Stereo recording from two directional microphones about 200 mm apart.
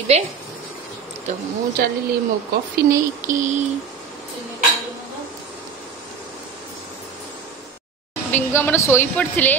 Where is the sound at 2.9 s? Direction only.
40° right (ahead or behind).